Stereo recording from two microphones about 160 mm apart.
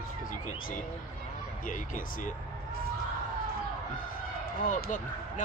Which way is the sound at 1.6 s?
55° left (ahead or behind).